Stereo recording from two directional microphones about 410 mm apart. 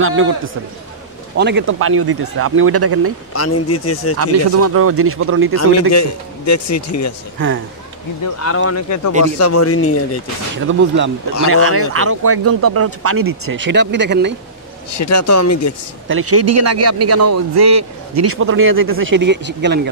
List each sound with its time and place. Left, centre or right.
0.0 s a man's voice: right
1.3 s speech: right
3.3 s a man's voice: left
4.2 s speech: right
5.6 s a man's voice: left
7.3 s a man's voice: right
8.4 s a man's voice: left
10.7 s a man's voice: right
15.0 s a man's voice: left
16.1 s a man's voice: right